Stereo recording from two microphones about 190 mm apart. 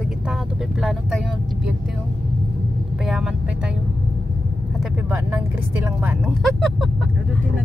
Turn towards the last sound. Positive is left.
turn(degrees=0)  # may be behind; listen again after turning